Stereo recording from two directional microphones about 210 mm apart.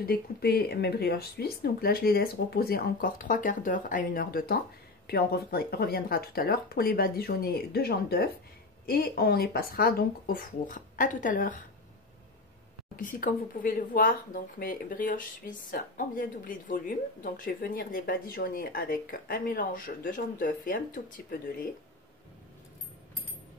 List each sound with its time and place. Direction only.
0.0 s speech: 50° left (ahead or behind)
12.9 s speech: 40° left (ahead or behind)